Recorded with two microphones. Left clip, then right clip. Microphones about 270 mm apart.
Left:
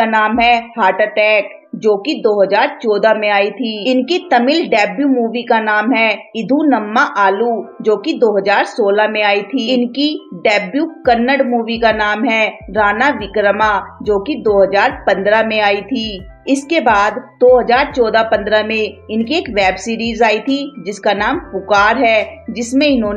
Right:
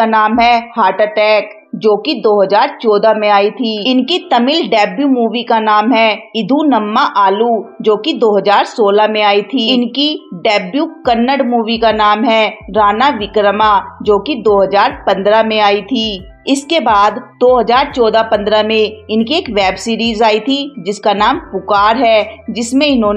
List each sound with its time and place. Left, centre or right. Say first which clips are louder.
0.0 s a woman's voice: right 2 dB; right